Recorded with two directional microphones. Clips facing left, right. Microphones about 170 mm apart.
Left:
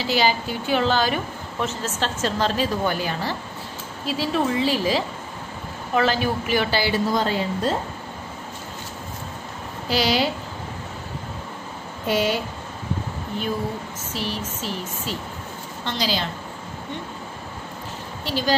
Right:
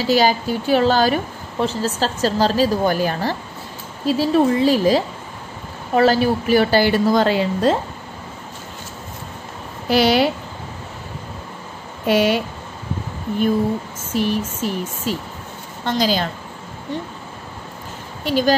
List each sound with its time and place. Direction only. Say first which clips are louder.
0.0 s a woman's voice: right 5 dB; 45° right (ahead or behind)
7.1 s speech: right 6 dB; 75° right (ahead or behind)
9.8 s a woman's voice: right 6 dB; 55° right (ahead or behind)
12.1 s speech: right 6 dB; 65° right (ahead or behind)
14.1 s a woman's voice: right 9 dB; 50° right (ahead or behind)
18.2 s speech: right 8 dB; 50° right (ahead or behind)